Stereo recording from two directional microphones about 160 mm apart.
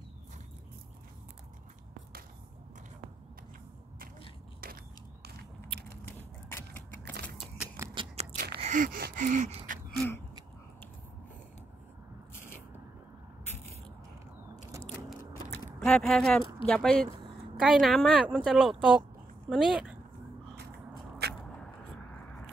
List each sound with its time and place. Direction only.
5.9 s a sound: 15° left (ahead or behind)
7.5 s scissors: 15° right (ahead or behind)
7.9 s biting: 30° right (ahead or behind)
8.5 s gasp: 50° right (ahead or behind)
15.8 s speech: 5° left (ahead or behind)
21.2 s a sound: 90° right